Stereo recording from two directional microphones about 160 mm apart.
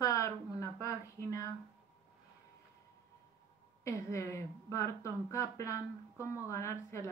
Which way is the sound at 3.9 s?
20° left (ahead or behind).